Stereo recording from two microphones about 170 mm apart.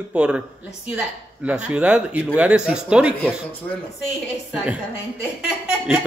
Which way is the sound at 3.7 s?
10° left (ahead or behind).